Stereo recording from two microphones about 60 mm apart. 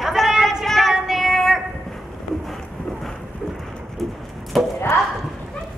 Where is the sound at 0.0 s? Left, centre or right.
Centre.